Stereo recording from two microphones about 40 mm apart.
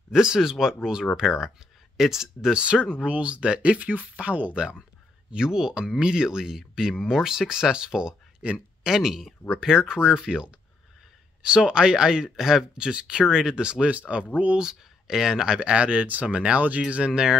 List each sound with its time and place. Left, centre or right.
0.1 s speech: centre
2.5 s speech: right
3.8 s speech: right
4.6 s speech: right
12.7 s speech: right
16.9 s speech: right